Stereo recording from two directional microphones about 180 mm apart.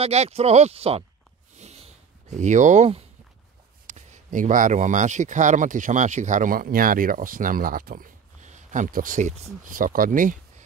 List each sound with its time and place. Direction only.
0.0 s speech: 35° right (ahead or behind)
1.6 s a sound: 35° right (ahead or behind)
2.3 s speech: 40° right (ahead or behind)